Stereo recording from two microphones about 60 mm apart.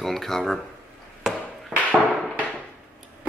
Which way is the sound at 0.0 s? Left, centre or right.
Centre.